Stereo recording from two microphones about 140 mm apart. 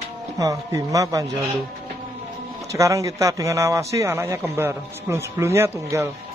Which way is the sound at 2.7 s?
20° right (ahead or behind).